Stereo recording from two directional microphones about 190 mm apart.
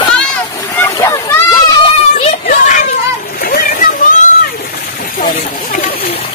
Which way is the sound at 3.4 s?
50° left (ahead or behind).